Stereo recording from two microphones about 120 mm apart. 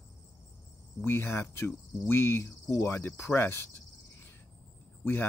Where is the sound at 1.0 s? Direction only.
20° left (ahead or behind).